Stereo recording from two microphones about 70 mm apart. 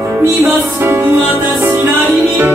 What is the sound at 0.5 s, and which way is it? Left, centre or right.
Music, right.